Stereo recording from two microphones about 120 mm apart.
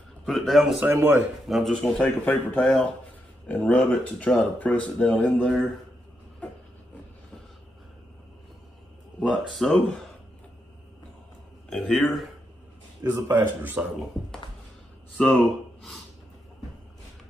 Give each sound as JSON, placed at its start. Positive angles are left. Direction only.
{"t": 0.2, "sound": "speech", "side_deg": 0}
{"t": 0.7, "sound": "speech", "side_deg": -20}
{"t": 1.5, "sound": "speech", "side_deg": 5}
{"t": 9.3, "sound": "speech", "side_deg": 5}
{"t": 11.7, "sound": "speech", "side_deg": 10}
{"t": 13.0, "sound": "speech", "side_deg": -15}
{"t": 15.1, "sound": "speech", "side_deg": 10}